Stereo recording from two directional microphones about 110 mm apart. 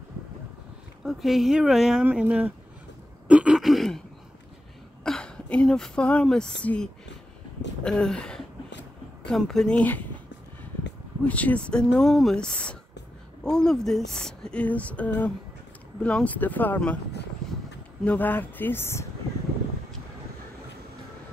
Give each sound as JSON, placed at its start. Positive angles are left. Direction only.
{"t": 1.0, "sound": "speech", "side_deg": 0}
{"t": 5.0, "sound": "speech", "side_deg": 5}
{"t": 11.2, "sound": "speech", "side_deg": 15}
{"t": 18.0, "sound": "speech", "side_deg": 15}